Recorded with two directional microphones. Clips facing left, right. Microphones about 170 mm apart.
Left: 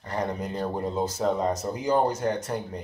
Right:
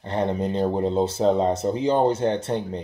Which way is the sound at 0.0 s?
30° right (ahead or behind).